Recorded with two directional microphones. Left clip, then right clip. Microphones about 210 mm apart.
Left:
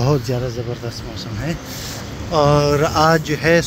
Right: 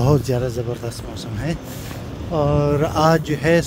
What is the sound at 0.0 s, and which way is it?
Speech, 25° right (ahead or behind).